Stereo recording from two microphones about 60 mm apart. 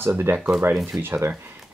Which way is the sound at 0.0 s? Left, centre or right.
Right.